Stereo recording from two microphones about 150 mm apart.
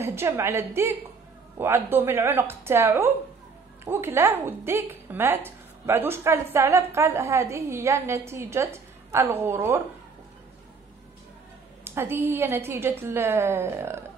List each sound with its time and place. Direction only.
0.0 s a woman's voice: 15° right (ahead or behind)
11.8 s a woman's voice: 15° right (ahead or behind)